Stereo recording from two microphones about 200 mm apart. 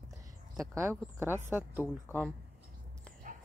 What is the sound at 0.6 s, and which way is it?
Speech, 15° right (ahead or behind).